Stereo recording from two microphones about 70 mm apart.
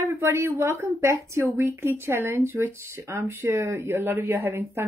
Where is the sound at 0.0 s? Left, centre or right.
Right.